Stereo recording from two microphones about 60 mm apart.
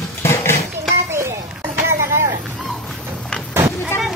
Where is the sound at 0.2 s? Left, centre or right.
Left.